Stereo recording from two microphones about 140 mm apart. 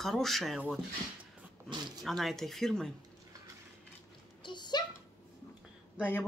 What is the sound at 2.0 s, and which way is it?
Speech, centre (ahead or behind).